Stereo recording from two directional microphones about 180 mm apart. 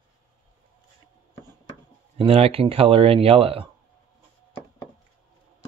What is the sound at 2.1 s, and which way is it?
Speech, 30° right (ahead or behind).